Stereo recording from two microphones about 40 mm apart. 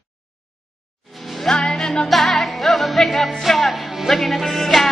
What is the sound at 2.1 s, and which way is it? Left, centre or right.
Music, centre.